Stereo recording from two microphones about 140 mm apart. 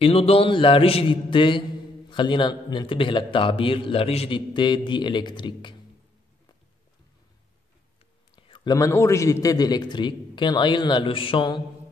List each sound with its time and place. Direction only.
0.0 s a man's voice: 45° left (ahead or behind)
8.4 s a sound: 40° left (ahead or behind)
8.7 s a man's voice: 20° left (ahead or behind)